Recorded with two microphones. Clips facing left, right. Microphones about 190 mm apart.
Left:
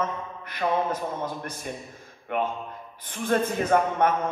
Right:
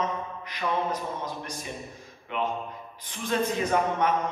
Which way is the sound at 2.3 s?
50° left (ahead or behind).